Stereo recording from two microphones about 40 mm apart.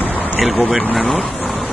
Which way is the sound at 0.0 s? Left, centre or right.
Left.